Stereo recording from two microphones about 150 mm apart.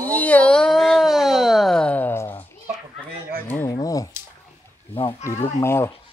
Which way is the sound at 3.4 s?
15° left (ahead or behind).